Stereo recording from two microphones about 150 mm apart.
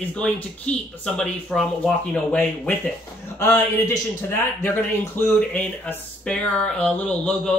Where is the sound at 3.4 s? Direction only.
20° left (ahead or behind).